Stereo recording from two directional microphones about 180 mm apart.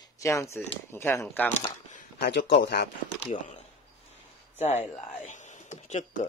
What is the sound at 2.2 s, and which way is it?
Speech, 70° left (ahead or behind).